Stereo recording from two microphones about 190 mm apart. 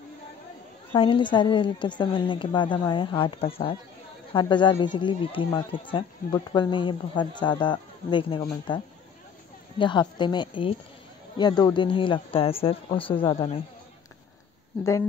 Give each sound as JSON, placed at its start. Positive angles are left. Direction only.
{"t": 0.9, "sound": "a man's voice", "side_deg": 25}
{"t": 14.8, "sound": "speech", "side_deg": 15}